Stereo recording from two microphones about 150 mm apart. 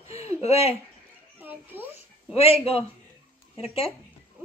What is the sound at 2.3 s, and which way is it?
Speech, 40° left (ahead or behind).